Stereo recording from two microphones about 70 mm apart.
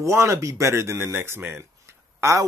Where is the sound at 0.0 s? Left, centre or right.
Right.